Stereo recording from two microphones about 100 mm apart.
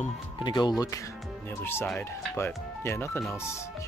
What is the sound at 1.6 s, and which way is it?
Speech, 20° left (ahead or behind).